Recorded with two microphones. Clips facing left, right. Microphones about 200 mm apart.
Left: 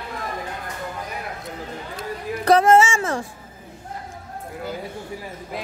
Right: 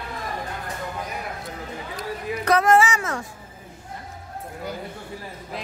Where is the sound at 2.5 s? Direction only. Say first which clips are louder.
Left 3 dB; 25° left (ahead or behind).